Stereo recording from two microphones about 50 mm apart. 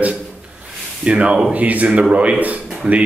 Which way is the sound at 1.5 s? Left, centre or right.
Right.